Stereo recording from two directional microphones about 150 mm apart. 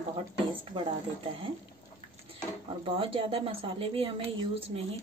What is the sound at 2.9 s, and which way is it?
A woman's voice, 35° right (ahead or behind).